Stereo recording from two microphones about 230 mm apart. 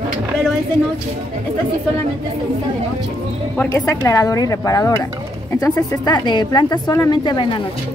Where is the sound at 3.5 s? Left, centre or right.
Centre.